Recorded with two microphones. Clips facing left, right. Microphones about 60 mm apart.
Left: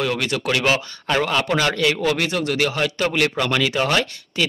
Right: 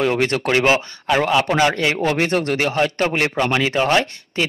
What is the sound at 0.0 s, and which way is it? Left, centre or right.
Speech, right.